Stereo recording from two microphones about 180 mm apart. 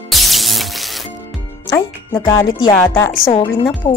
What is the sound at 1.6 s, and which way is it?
Speech, 15° left (ahead or behind).